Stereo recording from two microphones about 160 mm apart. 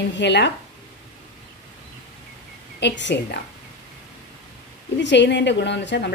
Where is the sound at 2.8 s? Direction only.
90° left.